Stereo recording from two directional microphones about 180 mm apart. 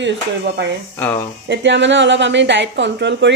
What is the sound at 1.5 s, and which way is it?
A woman's voice, 80° right.